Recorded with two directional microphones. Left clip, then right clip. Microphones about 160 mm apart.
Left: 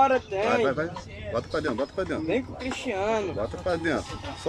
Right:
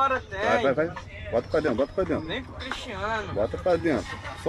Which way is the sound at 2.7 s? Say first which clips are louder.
Left 2 dB; 50° left (ahead or behind).